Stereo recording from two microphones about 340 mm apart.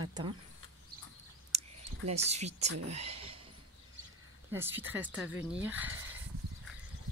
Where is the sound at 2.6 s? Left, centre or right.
Right.